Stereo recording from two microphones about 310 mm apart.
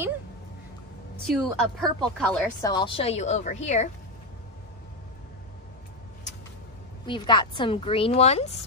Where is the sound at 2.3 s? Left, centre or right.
Centre.